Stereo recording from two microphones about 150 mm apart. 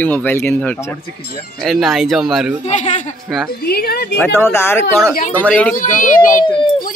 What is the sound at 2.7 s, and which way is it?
Speech, 50° left (ahead or behind).